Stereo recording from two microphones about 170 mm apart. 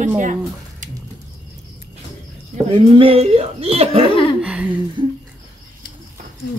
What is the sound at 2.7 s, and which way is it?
Speech, 30° right (ahead or behind).